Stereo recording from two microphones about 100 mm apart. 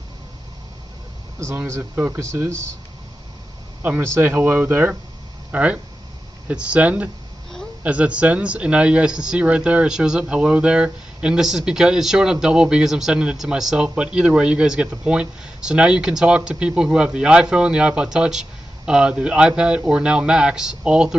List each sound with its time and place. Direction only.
1.7 s speech: 20° right (ahead or behind)
3.8 s speech: 20° right (ahead or behind)